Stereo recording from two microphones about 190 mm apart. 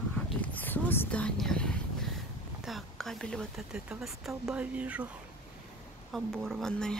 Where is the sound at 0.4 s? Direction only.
10° left (ahead or behind).